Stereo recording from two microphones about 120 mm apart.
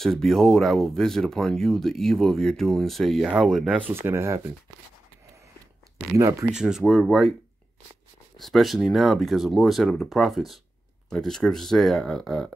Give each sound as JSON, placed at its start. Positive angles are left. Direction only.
{"t": 0.0, "sound": "speech", "side_deg": 5}
{"t": 3.8, "sound": "speech", "side_deg": -20}
{"t": 6.4, "sound": "speech", "side_deg": -5}
{"t": 8.4, "sound": "speech", "side_deg": 0}